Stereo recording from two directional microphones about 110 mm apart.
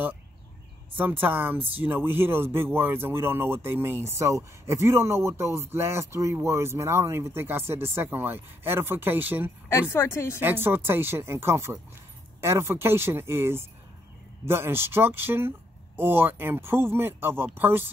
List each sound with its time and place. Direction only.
0.9 s speech: 15° right (ahead or behind)
9.7 s speech: 25° left (ahead or behind)
10.4 s speech: 20° right (ahead or behind)